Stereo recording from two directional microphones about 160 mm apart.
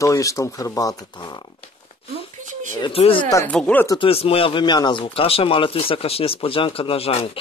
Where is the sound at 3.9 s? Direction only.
35° left (ahead or behind).